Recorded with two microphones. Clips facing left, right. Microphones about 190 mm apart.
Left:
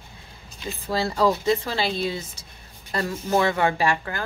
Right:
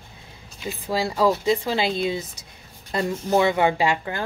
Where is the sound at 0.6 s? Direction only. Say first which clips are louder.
Right 1 dB; 10° right (ahead or behind).